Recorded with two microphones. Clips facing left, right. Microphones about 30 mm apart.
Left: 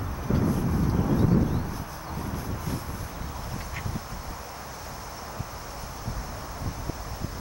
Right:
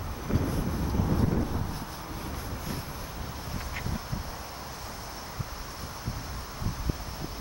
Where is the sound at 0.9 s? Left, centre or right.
Centre.